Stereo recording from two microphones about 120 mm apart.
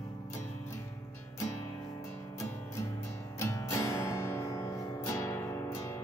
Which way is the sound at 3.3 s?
25° left (ahead or behind).